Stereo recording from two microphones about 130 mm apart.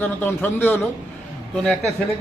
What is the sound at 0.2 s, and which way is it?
Speech, 15° left (ahead or behind).